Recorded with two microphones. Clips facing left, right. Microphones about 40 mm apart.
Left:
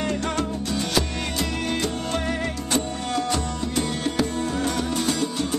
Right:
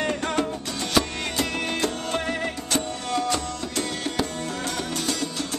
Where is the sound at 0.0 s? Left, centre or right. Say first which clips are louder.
Even; right.